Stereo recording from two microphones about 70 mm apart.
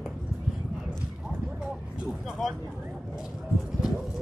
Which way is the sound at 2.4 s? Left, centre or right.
Centre.